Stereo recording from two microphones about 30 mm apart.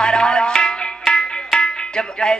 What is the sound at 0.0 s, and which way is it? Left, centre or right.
Music, left.